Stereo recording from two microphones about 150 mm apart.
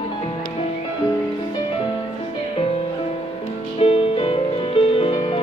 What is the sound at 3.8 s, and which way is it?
Music, 40° left (ahead or behind).